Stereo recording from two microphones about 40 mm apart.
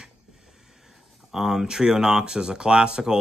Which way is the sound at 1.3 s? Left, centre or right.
Centre.